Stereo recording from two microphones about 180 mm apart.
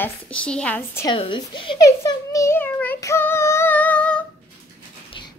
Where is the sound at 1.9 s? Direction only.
15° left (ahead or behind).